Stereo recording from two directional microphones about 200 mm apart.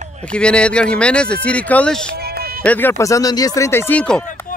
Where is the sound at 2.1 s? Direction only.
50° right (ahead or behind).